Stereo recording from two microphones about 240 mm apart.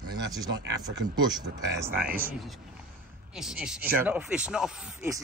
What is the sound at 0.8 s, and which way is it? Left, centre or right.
Speech, centre.